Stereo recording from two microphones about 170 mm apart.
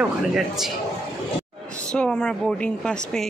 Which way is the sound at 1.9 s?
5° left (ahead or behind).